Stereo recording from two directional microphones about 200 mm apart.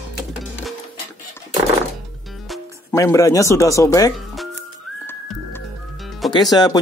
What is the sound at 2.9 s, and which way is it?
Speech, 15° left (ahead or behind).